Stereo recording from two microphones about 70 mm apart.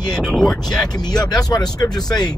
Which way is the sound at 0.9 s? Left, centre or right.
Left.